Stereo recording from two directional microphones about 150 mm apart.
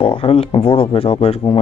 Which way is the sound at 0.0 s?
35° left (ahead or behind).